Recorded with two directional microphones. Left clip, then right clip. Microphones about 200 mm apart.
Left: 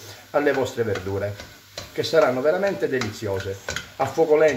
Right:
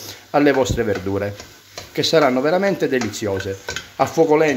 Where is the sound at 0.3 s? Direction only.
50° right (ahead or behind).